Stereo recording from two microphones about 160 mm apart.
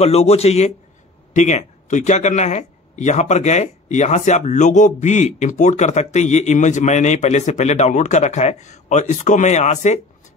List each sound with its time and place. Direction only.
0.0 s a man's voice: 40° left (ahead or behind)